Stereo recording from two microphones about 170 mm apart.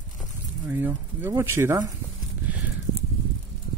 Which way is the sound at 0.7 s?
10° right (ahead or behind).